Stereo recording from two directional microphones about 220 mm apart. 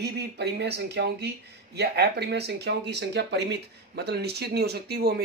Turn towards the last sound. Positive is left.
turn(degrees=-45)  # may be behind; listen again after turning